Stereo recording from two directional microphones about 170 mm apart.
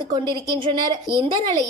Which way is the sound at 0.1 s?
25° right (ahead or behind).